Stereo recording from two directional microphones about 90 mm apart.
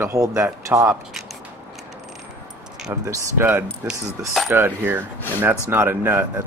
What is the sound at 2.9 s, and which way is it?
Speech, 30° right (ahead or behind).